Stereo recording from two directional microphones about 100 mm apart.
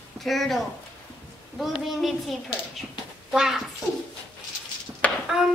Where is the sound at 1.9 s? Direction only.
Centre (ahead or behind).